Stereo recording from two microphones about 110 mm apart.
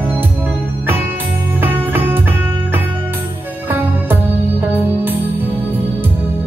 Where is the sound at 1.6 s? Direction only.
20° right (ahead or behind).